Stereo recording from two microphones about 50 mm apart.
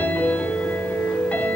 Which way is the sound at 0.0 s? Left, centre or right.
Left.